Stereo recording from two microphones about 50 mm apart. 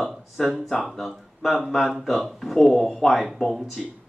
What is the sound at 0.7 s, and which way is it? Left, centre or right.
Speech, centre.